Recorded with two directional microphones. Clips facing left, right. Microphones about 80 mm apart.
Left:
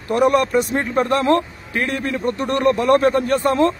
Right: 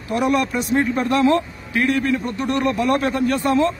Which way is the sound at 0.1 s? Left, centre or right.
Left.